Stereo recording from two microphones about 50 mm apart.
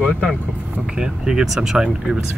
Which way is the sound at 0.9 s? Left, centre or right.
Centre.